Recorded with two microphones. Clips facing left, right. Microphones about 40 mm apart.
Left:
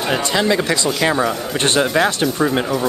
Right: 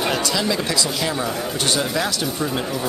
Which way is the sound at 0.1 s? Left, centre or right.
Left.